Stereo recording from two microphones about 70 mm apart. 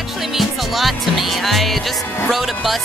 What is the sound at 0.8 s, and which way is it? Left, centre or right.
Music, centre.